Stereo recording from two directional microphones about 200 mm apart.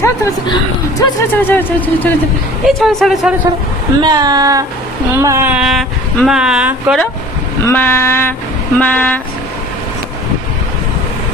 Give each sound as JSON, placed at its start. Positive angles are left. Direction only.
{"t": 0.0, "sound": "a woman's voice", "side_deg": 15}
{"t": 4.0, "sound": "a woman's voice", "side_deg": -20}
{"t": 7.6, "sound": "a woman's voice", "side_deg": 10}